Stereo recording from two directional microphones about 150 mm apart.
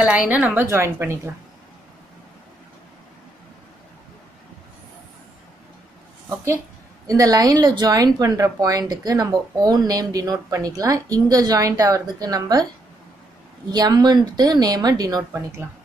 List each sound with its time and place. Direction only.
0.0 s a woman's voice: 10° right (ahead or behind)
7.1 s speech: 25° right (ahead or behind)
13.7 s speech: 25° right (ahead or behind)